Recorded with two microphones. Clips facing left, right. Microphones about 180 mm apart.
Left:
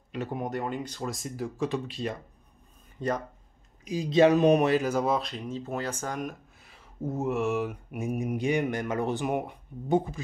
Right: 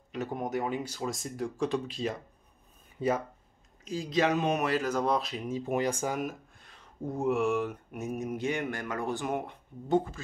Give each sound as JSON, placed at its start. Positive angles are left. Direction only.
{"t": 0.1, "sound": "speech", "side_deg": 0}
{"t": 3.8, "sound": "speech", "side_deg": 20}
{"t": 4.6, "sound": "speech", "side_deg": 15}
{"t": 6.5, "sound": "mantra", "side_deg": 5}